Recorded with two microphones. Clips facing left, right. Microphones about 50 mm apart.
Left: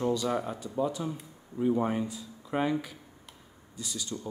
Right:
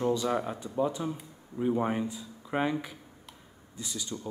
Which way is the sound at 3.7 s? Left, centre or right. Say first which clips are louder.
Even; right.